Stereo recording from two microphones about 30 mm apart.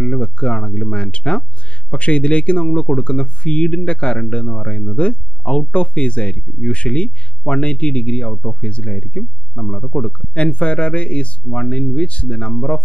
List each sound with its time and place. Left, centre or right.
0.0 s speech: left